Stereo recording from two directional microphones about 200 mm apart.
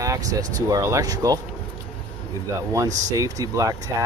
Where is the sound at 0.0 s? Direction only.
15° right (ahead or behind).